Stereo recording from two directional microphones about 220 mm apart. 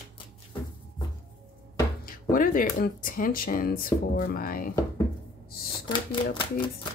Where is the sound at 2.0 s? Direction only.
40° left (ahead or behind).